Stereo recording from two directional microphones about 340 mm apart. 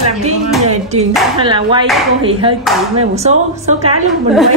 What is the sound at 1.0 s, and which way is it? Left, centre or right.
Speech, centre.